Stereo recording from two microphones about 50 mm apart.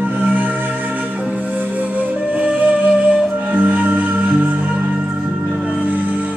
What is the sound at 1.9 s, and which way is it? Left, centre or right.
Music, right.